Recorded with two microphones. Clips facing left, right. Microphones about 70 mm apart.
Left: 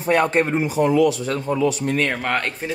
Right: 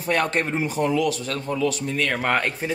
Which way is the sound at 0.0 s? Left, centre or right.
Centre.